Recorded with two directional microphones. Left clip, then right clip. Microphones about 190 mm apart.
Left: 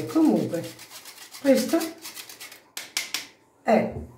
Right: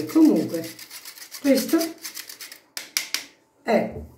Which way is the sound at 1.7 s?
15° left (ahead or behind).